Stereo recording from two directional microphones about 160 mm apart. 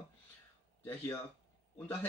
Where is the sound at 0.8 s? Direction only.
15° left (ahead or behind).